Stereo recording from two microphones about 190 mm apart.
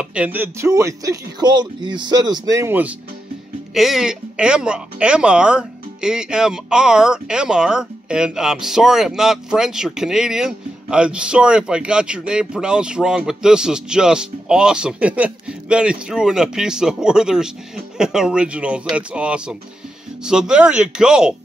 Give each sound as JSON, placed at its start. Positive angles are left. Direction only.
{"t": 0.0, "sound": "speech", "side_deg": -5}